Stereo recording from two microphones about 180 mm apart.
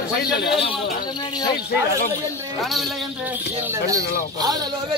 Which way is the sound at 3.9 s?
65° left (ahead or behind).